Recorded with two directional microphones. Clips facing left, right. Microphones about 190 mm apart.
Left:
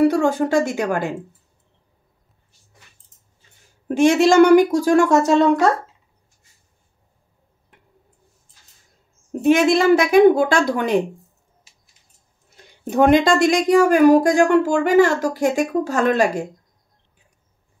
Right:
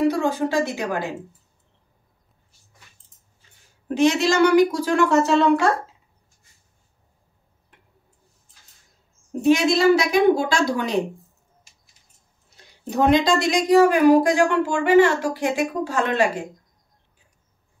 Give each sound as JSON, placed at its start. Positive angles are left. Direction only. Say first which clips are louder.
{"t": 0.1, "sound": "speech", "louder": "left 4 dB", "side_deg": 50}
{"t": 3.9, "sound": "speech", "louder": "left 5 dB", "side_deg": 50}
{"t": 9.4, "sound": "speech", "louder": "left 2 dB", "side_deg": 55}
{"t": 12.9, "sound": "speech", "louder": "left 3 dB", "side_deg": 50}